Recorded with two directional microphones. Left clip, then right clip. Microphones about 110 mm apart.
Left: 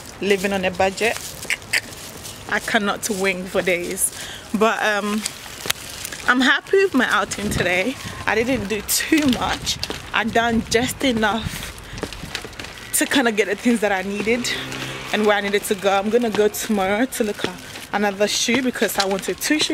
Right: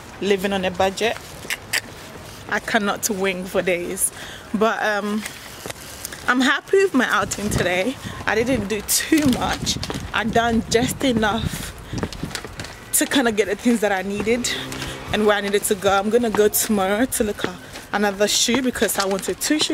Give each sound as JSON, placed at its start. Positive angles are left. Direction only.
{"t": 0.2, "sound": "speech", "side_deg": -5}
{"t": 6.2, "sound": "speech", "side_deg": -5}
{"t": 12.9, "sound": "speech", "side_deg": 0}